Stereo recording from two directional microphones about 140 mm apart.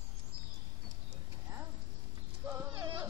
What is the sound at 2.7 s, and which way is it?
Music, 20° right (ahead or behind).